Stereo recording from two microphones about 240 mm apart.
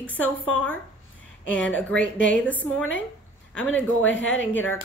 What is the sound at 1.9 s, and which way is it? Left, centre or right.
Speech, left.